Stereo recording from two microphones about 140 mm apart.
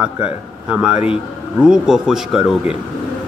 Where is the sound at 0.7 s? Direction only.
5° right (ahead or behind).